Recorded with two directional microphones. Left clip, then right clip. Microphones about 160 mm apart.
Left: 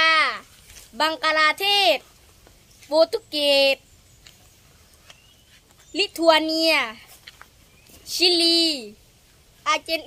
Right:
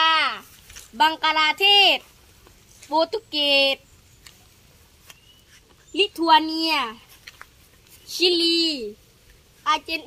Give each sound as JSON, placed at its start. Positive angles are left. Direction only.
{"t": 0.0, "sound": "a sound", "side_deg": 15}
{"t": 0.9, "sound": "a woman's voice", "side_deg": 15}
{"t": 5.9, "sound": "a woman's voice", "side_deg": 25}
{"t": 8.1, "sound": "a woman's voice", "side_deg": 25}